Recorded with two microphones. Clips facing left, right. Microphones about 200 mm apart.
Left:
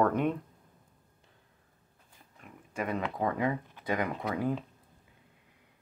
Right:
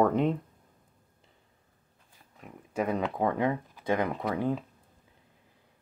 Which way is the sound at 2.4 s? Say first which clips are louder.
Right 5 dB; centre (ahead or behind).